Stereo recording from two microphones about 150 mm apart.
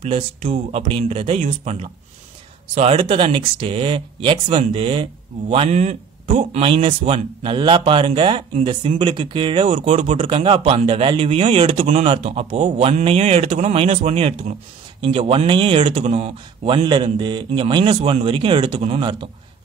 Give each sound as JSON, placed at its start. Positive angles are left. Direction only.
{"t": 0.0, "sound": "speech", "side_deg": -45}
{"t": 6.6, "sound": "speech", "side_deg": -35}
{"t": 11.8, "sound": "speech", "side_deg": -55}
{"t": 15.0, "sound": "speech", "side_deg": -35}